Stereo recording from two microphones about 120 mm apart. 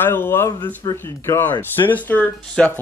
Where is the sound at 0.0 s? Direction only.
20° left (ahead or behind).